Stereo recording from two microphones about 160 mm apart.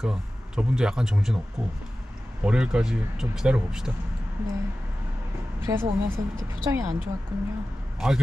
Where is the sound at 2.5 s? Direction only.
5° right (ahead or behind).